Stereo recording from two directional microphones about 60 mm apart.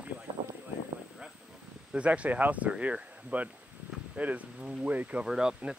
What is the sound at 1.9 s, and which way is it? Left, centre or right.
Speech, right.